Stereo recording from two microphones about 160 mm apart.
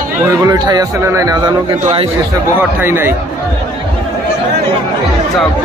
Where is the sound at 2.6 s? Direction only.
15° right (ahead or behind).